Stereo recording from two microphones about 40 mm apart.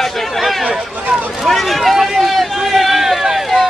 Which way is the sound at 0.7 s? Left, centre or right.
Right.